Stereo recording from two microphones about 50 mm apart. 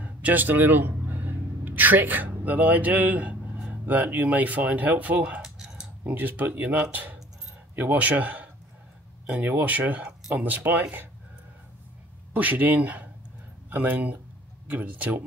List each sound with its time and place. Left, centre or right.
0.0 s speech: right
12.4 s speech: right